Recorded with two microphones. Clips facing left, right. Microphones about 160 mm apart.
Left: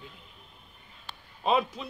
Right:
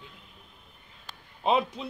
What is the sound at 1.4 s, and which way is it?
Speech, 20° right (ahead or behind).